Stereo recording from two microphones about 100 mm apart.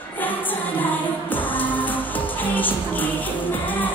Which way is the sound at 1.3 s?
20° left (ahead or behind).